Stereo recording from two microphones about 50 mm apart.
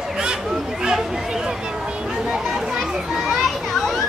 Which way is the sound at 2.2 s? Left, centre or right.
Centre.